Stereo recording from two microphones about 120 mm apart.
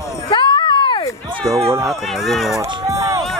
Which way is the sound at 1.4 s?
5° left (ahead or behind).